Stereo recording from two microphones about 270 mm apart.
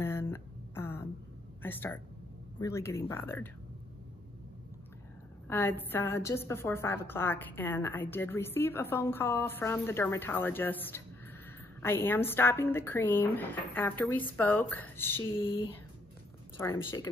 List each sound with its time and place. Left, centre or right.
0.0 s a sound: centre
1.6 s a woman's voice: centre
5.5 s a woman's voice: centre
15.4 s a woman's voice: centre